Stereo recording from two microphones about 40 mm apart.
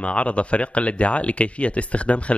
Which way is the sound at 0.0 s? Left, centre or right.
Left.